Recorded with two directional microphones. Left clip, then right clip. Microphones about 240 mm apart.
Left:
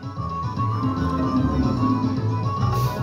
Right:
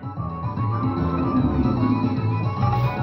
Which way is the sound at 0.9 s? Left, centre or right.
Left.